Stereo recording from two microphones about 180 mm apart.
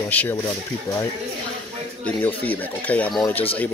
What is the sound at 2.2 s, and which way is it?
Speech, 10° left (ahead or behind).